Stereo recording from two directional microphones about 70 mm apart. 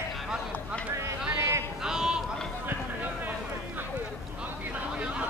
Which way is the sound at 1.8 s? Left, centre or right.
Centre.